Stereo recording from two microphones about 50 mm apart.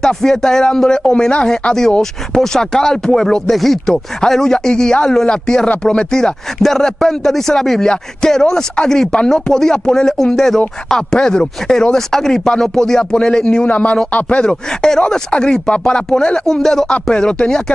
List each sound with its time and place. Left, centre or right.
0.0 s speech: centre
13.7 s a man's voice: left
14.4 s speech: centre